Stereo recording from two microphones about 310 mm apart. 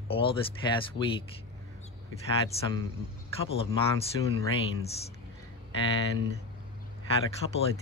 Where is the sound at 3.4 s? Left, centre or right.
Centre.